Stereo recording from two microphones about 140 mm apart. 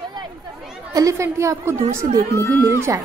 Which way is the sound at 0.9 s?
20° right (ahead or behind).